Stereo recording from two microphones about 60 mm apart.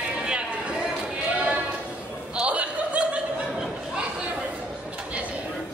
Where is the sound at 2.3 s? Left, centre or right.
Right.